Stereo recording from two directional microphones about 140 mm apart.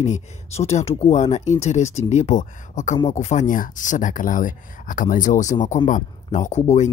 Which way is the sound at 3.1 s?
50° left (ahead or behind).